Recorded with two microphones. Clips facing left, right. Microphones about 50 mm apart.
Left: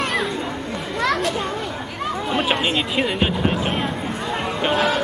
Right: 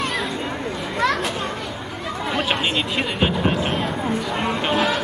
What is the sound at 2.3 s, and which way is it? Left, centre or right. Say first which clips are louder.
Music: left 1 dB; centre.